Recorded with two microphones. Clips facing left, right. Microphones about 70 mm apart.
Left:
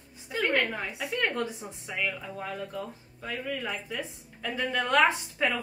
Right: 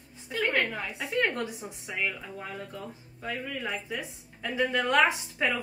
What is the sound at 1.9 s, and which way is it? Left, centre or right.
Speech, centre.